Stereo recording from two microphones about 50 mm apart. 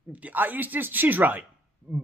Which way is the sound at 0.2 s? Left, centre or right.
Right.